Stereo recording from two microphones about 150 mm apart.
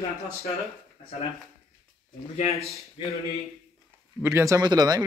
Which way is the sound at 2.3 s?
45° left (ahead or behind).